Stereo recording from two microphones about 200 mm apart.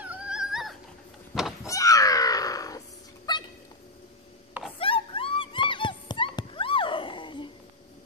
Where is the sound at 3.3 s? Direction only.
20° left (ahead or behind).